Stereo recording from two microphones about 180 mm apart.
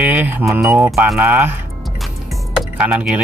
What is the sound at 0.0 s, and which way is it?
Speech, 10° right (ahead or behind).